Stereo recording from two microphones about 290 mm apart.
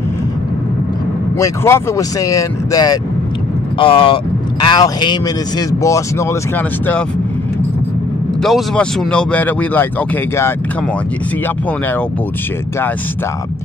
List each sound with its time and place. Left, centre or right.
1.4 s speech: centre
8.4 s speech: centre